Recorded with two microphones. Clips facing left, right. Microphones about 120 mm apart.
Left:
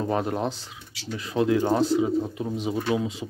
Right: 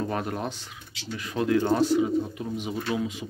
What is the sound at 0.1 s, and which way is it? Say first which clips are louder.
Speech: left 4 dB; 25° left (ahead or behind).